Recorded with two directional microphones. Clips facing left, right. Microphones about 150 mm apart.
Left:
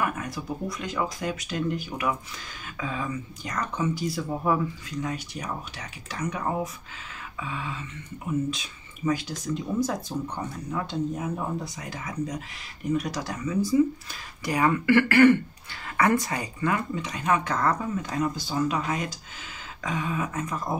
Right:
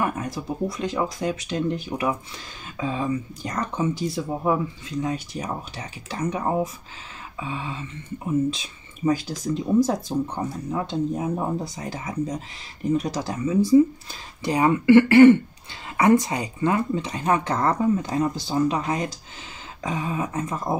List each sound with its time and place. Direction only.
0.0 s speech: 30° right (ahead or behind)